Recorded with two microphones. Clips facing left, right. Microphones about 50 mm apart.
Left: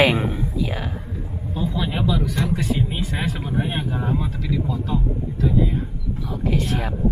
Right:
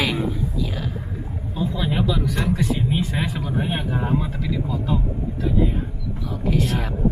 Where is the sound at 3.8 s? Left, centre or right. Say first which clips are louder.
Right 1 dB; centre.